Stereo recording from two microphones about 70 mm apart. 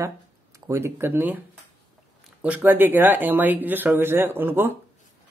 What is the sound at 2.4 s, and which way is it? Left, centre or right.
A man's voice, right.